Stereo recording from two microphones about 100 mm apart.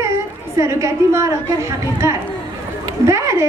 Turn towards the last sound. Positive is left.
turn(degrees=-30)  # may be behind; listen again after turning